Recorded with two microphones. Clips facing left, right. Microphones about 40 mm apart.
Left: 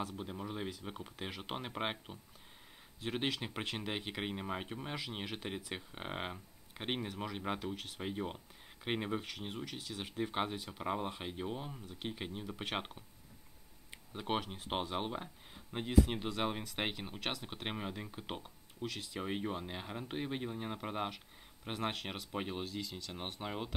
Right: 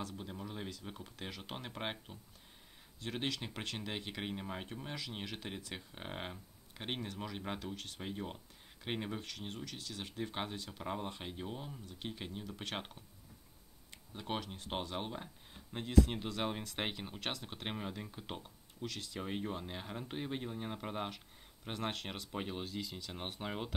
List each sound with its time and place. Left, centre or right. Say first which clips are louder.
0.0 s speech: left 3 dB; centre